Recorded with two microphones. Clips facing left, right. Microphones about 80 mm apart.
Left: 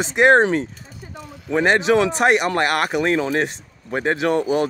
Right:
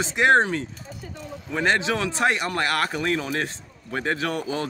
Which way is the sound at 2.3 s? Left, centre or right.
Left.